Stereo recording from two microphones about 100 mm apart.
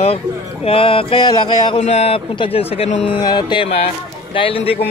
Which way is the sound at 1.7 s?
90° left.